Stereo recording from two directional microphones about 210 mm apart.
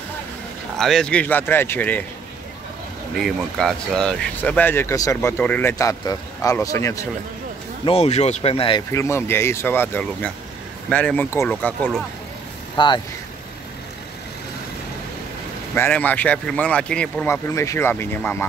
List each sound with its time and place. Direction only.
0.7 s speech: centre (ahead or behind)
3.2 s speech: centre (ahead or behind)
7.8 s speech: 30° left (ahead or behind)
8.9 s speech: 15° left (ahead or behind)
12.7 s speech: 20° left (ahead or behind)
15.7 s speech: 10° left (ahead or behind)